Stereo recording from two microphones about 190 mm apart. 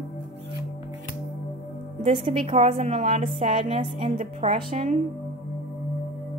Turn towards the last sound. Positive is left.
turn(degrees=-40)  # may be behind; listen again after turning